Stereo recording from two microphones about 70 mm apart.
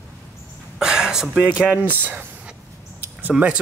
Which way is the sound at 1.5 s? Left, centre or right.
Centre.